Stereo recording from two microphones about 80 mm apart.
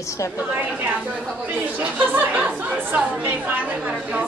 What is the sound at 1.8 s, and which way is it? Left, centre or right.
Speech, centre.